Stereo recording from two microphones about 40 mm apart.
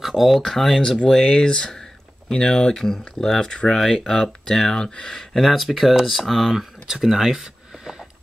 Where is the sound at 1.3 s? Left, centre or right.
Left.